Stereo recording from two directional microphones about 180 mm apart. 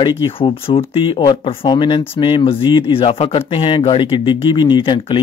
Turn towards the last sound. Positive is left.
turn(degrees=25)  # may be behind; listen again after turning